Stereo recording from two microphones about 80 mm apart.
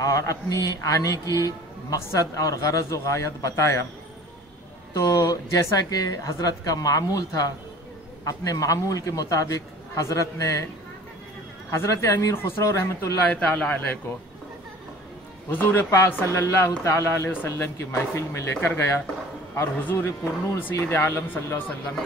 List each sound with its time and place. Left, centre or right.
0.0 s speech: left
4.9 s speech: left
11.7 s speech: left
13.3 s a man's voice: centre
15.5 s speech: left